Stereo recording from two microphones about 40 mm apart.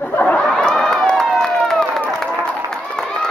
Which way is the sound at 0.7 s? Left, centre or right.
Centre.